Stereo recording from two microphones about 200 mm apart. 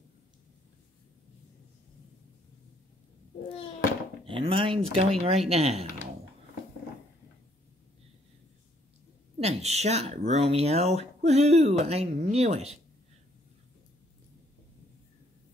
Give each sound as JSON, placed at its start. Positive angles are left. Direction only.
{"t": 4.3, "sound": "speech", "side_deg": -25}
{"t": 9.4, "sound": "speech", "side_deg": -35}